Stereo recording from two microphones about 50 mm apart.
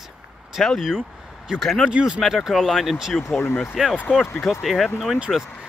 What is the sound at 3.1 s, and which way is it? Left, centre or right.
Speech, centre.